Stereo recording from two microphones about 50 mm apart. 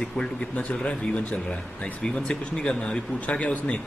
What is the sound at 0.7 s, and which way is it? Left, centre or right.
Speech, left.